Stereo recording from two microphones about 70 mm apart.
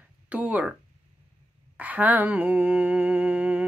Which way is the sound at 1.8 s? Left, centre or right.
Right.